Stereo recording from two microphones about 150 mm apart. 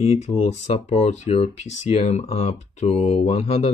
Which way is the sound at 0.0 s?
50° left (ahead or behind).